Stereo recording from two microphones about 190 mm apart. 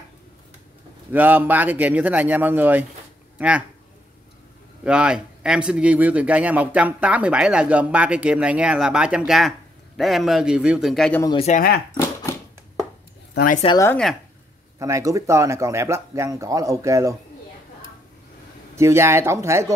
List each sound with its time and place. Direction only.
1.1 s speech: 10° right (ahead or behind)
4.8 s speech: 5° right (ahead or behind)
11.2 s speech: 35° left (ahead or behind)
13.3 s speech: 55° left (ahead or behind)
13.7 s speech: 10° left (ahead or behind)
14.8 s speech: 15° right (ahead or behind)
18.8 s speech: 15° right (ahead or behind)